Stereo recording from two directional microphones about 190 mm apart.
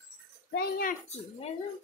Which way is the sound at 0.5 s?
50° left (ahead or behind).